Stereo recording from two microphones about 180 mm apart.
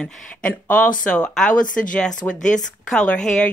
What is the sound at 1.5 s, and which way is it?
Speech, 50° left (ahead or behind).